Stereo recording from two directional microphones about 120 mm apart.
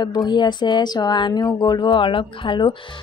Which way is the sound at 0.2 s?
35° left (ahead or behind).